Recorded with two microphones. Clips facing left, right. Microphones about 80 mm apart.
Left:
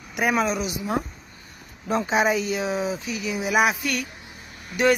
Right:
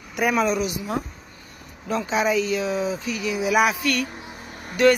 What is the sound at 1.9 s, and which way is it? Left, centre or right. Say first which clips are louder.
Speech: left 1 dB; left.